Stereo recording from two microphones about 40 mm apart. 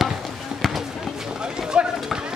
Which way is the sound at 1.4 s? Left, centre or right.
Centre.